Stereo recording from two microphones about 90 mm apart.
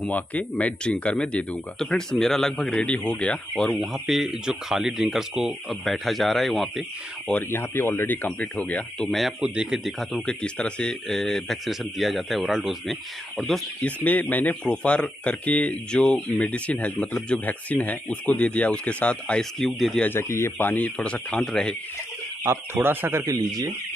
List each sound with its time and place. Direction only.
0.1 s speech: 15° left (ahead or behind)
3.8 s speech: 5° right (ahead or behind)
7.5 s speech: 25° left (ahead or behind)
8.3 s speech: 10° left (ahead or behind)
9.4 s speech: 10° right (ahead or behind)
10.1 s speech: 10° left (ahead or behind); by 12.9 s 5° right (ahead or behind)
13.8 s speech: 20° left (ahead or behind)
20.0 s speech: 25° left (ahead or behind); by 21.7 s 10° left (ahead or behind)
22.4 s speech: 25° right (ahead or behind)
23.2 s speech: 45° right (ahead or behind)